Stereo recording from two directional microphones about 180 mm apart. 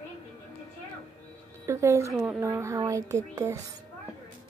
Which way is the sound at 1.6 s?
15° right (ahead or behind).